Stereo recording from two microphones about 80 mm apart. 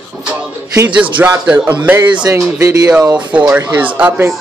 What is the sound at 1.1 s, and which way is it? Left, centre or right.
Speech, centre.